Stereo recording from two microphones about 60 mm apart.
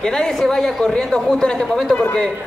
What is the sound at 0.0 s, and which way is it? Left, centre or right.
A man's voice, centre.